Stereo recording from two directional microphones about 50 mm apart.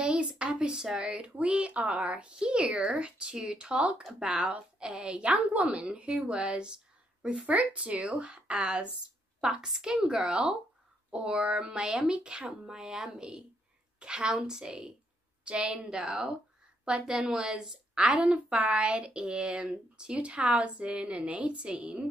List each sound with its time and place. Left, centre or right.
0.0 s a sound: right
1.0 s a woman's voice: right
5.1 s a woman's voice: right